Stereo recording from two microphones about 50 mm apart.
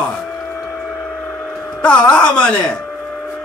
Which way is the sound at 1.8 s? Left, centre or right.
Left.